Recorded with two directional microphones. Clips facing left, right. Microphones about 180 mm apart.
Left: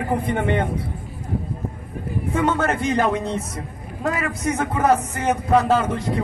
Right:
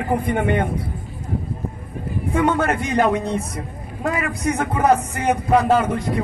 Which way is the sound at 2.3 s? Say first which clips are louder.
Right 2 dB; 15° right (ahead or behind).